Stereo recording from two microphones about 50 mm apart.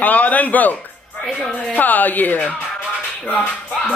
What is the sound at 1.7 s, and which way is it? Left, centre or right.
Speech, left.